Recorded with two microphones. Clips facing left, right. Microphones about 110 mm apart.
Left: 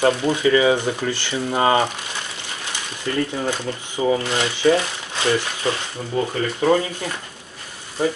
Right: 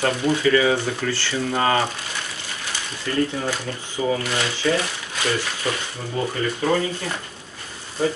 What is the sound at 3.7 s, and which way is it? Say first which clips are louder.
Speech: left 5 dB; 30° left (ahead or behind).